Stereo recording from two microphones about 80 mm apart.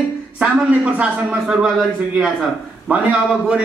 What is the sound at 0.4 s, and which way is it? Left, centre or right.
Speech, centre.